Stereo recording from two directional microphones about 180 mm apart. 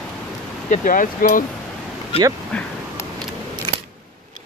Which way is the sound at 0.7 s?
50° left (ahead or behind).